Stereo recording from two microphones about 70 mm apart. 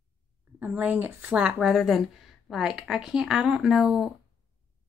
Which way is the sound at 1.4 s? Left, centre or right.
Centre.